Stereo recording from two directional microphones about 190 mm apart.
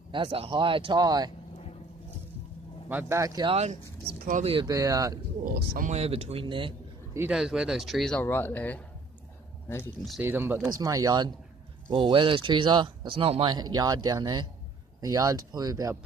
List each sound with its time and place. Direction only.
0.1 s speech: 25° right (ahead or behind)
2.9 s speech: 10° right (ahead or behind)
4.1 s speech: 55° right (ahead or behind)
4.4 s speech: 30° right (ahead or behind)
4.6 s speech: 20° right (ahead or behind)
5.4 s speech: 50° right (ahead or behind)
5.9 s speech: 35° right (ahead or behind)
7.2 s speech: 5° right (ahead or behind)
10.2 s speech: 10° right (ahead or behind)